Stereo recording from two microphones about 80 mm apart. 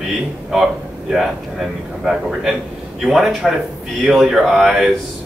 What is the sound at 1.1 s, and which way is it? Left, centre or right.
Speech, centre.